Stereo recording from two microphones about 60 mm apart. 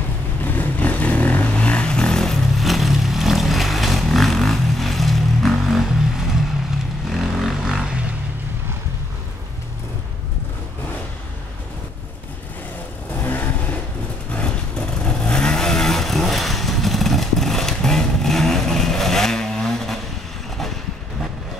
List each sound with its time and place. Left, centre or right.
0.5 s vehicle: left; by 8.0 s centre
13.2 s vehicle: left
14.3 s vehicle: centre